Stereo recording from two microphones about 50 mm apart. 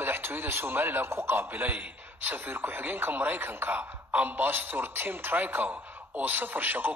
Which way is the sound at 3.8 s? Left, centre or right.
Right.